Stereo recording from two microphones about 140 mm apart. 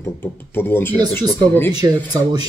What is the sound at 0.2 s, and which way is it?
Speech, 15° left (ahead or behind).